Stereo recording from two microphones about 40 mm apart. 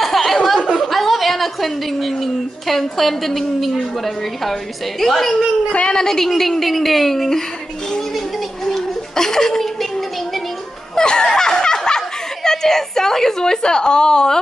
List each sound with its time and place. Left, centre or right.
0.0 s a sound: centre
0.7 s a woman's voice: centre
5.7 s a woman's voice: left
5.9 s a woman's voice: centre
8.6 s laughter: centre
9.8 s a sound: centre
11.0 s snicker: centre
12.4 s a woman's voice: centre